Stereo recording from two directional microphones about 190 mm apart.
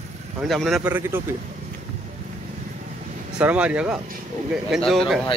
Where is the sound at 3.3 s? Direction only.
5° right (ahead or behind).